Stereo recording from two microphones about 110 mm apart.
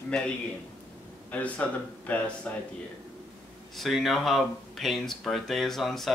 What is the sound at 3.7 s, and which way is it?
Speech, centre (ahead or behind).